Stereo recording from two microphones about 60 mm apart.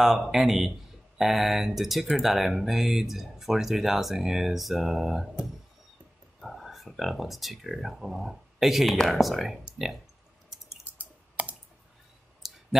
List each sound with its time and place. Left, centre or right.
0.0 s speech: centre
6.4 s speech: centre
11.0 s clicking: right
12.4 s clicking: centre